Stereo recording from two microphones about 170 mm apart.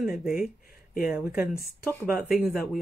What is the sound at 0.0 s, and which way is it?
Speech, 5° right (ahead or behind).